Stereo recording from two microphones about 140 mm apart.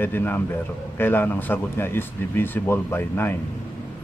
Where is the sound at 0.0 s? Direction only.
15° left (ahead or behind).